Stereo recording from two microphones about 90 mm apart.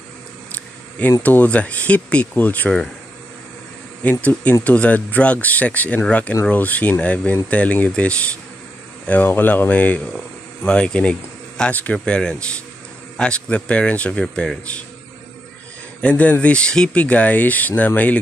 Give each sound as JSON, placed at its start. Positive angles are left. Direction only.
{"t": 1.2, "sound": "speech", "side_deg": 15}
{"t": 4.0, "sound": "speech", "side_deg": 20}
{"t": 16.0, "sound": "speech", "side_deg": 15}